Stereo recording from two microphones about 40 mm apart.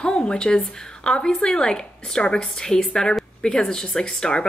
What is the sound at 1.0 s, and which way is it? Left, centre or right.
A woman's voice, left.